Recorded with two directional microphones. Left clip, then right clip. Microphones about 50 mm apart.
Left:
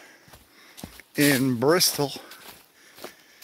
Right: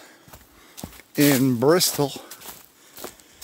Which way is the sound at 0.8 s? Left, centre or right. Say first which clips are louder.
Right 4 dB; right.